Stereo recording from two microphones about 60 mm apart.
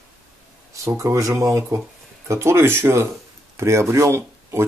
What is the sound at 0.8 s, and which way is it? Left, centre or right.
Speech, right.